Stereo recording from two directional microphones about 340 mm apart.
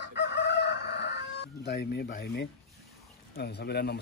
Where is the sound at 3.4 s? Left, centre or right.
Left.